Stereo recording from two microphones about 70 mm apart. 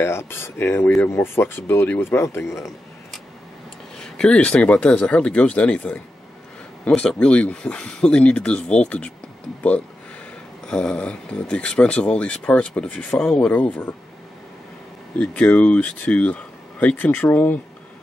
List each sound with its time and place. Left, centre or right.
0.0 s speech: left
4.0 s speech: centre
7.0 s speech: centre
10.7 s speech: centre
15.1 s speech: centre